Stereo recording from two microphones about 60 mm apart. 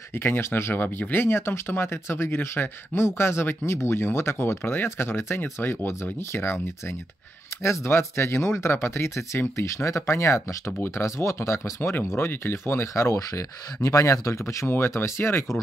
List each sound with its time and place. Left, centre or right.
0.1 s speech: left
12.8 s speech: left
14.7 s speech: left